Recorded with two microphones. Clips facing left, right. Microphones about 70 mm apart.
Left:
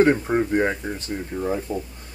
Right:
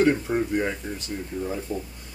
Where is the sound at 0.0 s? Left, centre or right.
Left.